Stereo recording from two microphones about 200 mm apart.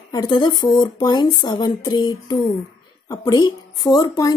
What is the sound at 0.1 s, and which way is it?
Speech, 20° left (ahead or behind).